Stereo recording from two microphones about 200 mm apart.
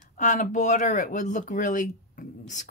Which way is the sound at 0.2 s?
40° left (ahead or behind).